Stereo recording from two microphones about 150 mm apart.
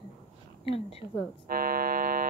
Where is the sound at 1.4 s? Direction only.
70° right (ahead or behind).